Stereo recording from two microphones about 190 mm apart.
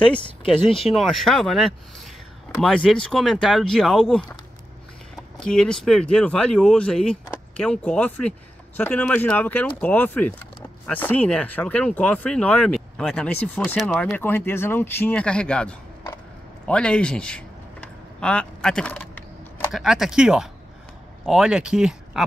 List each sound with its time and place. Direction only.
0.7 s speech: 30° left (ahead or behind)
1.1 s speech: centre (ahead or behind)
5.4 s speech: 5° left (ahead or behind)
16.6 s a sound: 5° left (ahead or behind)
19.7 s speech: centre (ahead or behind)